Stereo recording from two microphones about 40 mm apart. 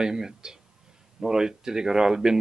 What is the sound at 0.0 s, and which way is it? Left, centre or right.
Speech, centre.